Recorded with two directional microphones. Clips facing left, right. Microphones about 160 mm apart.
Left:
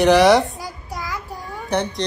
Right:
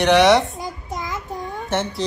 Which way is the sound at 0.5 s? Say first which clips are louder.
Right 2 dB; 20° right (ahead or behind).